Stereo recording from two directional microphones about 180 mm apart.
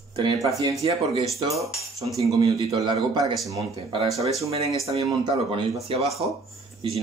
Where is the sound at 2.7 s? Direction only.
25° right (ahead or behind).